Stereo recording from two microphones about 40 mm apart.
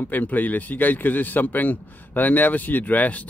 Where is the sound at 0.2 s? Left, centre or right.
Left.